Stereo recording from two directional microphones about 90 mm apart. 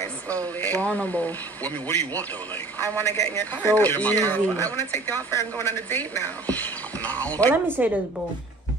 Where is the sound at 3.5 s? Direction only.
20° left (ahead or behind).